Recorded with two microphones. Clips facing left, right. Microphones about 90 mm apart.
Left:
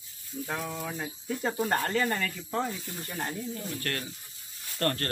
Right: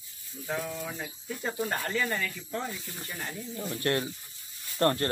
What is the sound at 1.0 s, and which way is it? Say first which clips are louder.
Speech: left 4 dB; 45° left (ahead or behind).